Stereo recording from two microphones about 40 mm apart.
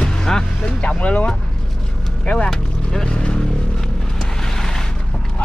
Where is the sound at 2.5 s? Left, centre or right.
Centre.